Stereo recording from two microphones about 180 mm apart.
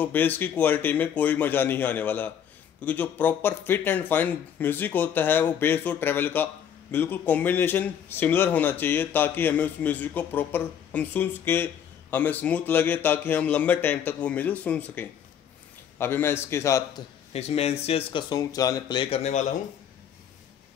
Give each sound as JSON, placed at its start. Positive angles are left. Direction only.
{"t": 0.0, "sound": "speech", "side_deg": 10}
{"t": 17.3, "sound": "speech", "side_deg": 35}